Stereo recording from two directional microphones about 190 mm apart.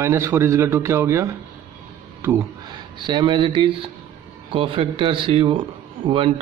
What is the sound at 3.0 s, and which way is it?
Speech, 25° right (ahead or behind).